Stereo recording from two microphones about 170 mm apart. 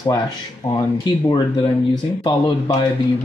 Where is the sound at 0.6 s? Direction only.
25° left (ahead or behind).